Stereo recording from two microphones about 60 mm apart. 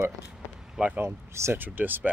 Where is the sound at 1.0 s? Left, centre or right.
Right.